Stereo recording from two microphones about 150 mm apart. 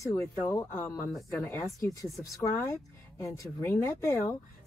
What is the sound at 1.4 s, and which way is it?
Speech, 15° left (ahead or behind).